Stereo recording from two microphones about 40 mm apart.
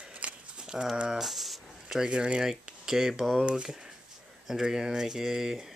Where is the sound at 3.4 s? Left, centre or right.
Right.